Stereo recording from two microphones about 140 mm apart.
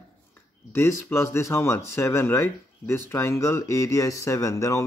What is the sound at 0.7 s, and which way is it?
Speech, 20° left (ahead or behind).